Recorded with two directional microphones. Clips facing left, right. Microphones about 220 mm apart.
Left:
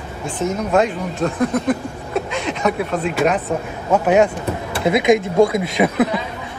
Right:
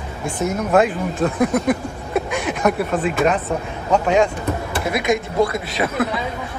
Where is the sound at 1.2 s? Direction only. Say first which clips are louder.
Right 1 dB; 10° right (ahead or behind); by 4.2 s 5° left (ahead or behind).